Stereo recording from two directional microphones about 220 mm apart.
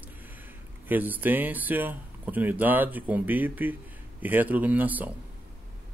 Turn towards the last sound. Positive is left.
turn(degrees=-5)  # may be behind; listen again after turning